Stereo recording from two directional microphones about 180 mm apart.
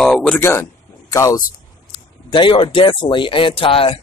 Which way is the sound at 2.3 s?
30° left (ahead or behind).